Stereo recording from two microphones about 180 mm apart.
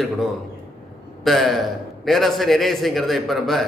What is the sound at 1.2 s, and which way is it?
A man's voice, centre (ahead or behind).